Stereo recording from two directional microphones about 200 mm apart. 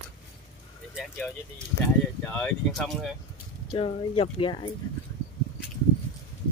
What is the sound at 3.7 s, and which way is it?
Speech, 25° left (ahead or behind).